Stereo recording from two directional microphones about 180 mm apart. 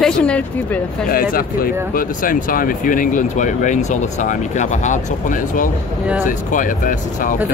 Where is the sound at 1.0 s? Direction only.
55° left (ahead or behind).